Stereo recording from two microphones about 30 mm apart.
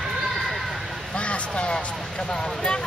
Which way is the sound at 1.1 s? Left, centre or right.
Left.